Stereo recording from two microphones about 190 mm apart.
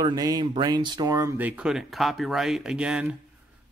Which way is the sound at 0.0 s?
20° right (ahead or behind).